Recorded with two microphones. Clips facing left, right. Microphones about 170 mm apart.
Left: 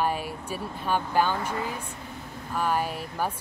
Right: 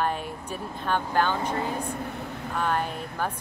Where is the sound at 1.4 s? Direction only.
30° right (ahead or behind).